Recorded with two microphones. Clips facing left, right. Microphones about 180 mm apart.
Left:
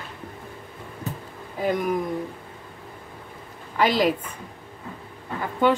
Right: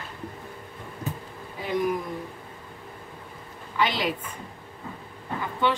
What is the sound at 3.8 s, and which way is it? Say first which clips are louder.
Speech: left 5 dB; 40° left (ahead or behind).